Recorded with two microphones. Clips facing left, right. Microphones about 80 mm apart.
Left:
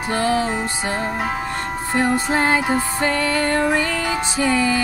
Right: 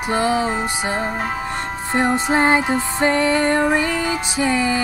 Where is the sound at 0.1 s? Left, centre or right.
Centre.